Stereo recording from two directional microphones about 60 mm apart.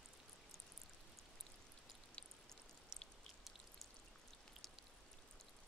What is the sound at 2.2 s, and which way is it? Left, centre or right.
Raindrop, centre.